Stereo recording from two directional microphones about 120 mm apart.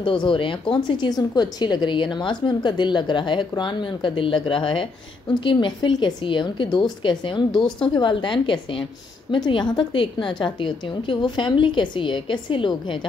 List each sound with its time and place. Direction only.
0.0 s a woman's voice: 45° left (ahead or behind)